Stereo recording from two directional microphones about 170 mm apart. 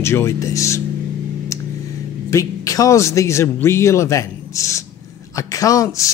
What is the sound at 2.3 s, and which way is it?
A man's voice, 20° left (ahead or behind).